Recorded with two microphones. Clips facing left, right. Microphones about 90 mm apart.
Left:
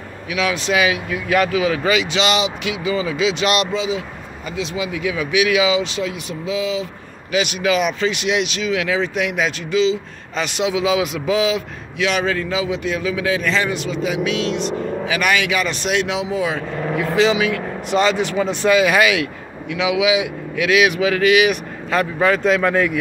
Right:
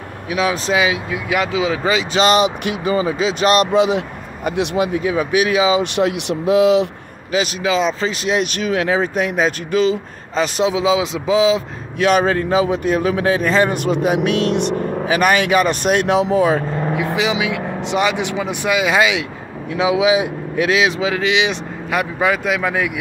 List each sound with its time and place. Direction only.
0.3 s speech: 35° right (ahead or behind)
2.1 s speech: 45° right (ahead or behind)
3.7 s speech: 60° right (ahead or behind); by 5.8 s 35° right (ahead or behind)
5.8 s speech: 65° right (ahead or behind)
7.3 s speech: 30° right (ahead or behind)
12.0 s speech: 45° right (ahead or behind); by 14.8 s 60° right (ahead or behind)
15.0 s speech: 40° right (ahead or behind)
17.0 s speech: 15° right (ahead or behind)
19.7 s speech: 35° right (ahead or behind)
21.9 s speech: 10° right (ahead or behind)